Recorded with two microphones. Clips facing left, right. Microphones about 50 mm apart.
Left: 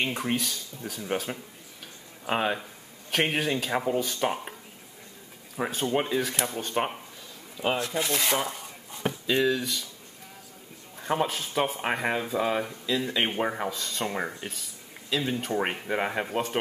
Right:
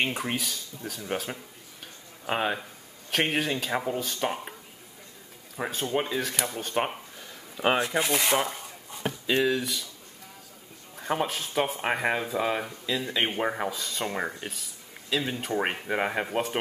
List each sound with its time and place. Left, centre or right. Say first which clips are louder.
0.1 s speech: left 2 dB; centre
5.6 s speech: left 2 dB; centre
7.8 s rub: right 2 dB; right
8.2 s rub: right 2 dB; centre
9.2 s speech: even; centre
11.0 s speech: left 1 dB; centre